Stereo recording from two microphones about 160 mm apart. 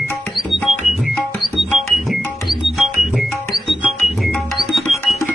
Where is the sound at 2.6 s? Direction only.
Centre (ahead or behind).